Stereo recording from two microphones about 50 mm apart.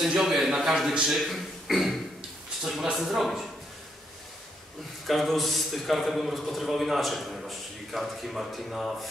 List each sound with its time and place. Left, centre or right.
0.2 s a man's voice: centre
5.0 s a man's voice: centre